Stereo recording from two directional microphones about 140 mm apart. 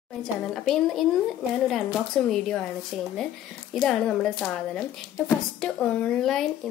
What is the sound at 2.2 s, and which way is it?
A woman's voice, 5° left (ahead or behind).